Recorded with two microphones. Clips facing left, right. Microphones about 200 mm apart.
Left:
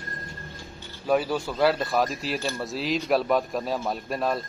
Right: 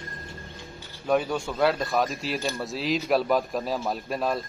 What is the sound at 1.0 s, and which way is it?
Speech, 5° left (ahead or behind).